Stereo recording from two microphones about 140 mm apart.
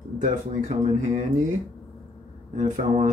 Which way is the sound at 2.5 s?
60° right (ahead or behind).